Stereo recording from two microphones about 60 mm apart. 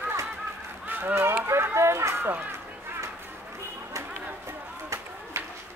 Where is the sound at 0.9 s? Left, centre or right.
Right.